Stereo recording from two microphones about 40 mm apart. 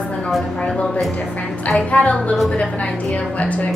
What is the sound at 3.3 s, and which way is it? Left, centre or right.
Child singing, left.